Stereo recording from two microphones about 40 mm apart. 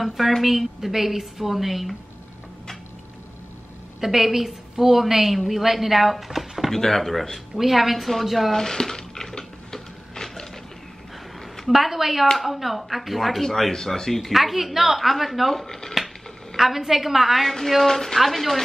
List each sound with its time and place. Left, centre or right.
0.4 s speech: centre
4.0 s speech: centre
6.7 s a sound: centre
11.7 s speech: centre
16.5 s speech: centre
17.5 s speech: centre